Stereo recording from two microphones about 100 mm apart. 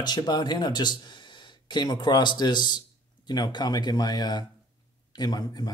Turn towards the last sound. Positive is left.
turn(degrees=40)  # may be behind; listen again after turning